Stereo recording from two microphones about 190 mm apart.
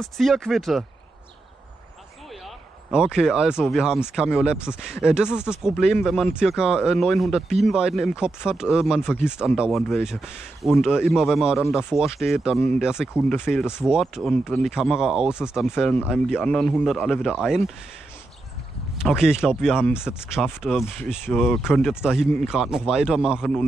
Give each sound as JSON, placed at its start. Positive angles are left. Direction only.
{"t": 0.0, "sound": "speech", "side_deg": 0}
{"t": 2.4, "sound": "a sound", "side_deg": -5}
{"t": 3.6, "sound": "speech", "side_deg": 0}
{"t": 5.3, "sound": "speech", "side_deg": 10}
{"t": 5.6, "sound": "speech", "side_deg": -5}
{"t": 19.0, "sound": "speech", "side_deg": -5}